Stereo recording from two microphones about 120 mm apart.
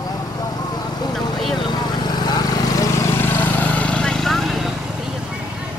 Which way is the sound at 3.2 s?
15° left (ahead or behind).